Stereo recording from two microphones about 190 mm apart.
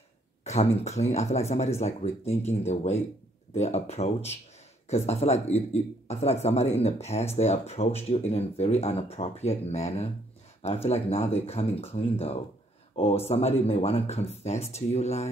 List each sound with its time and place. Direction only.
0.4 s speech: 35° left (ahead or behind)